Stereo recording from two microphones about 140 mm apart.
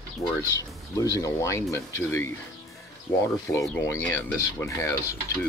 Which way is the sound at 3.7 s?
15° left (ahead or behind).